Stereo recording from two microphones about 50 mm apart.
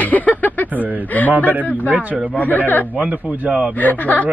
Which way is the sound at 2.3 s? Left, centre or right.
Left.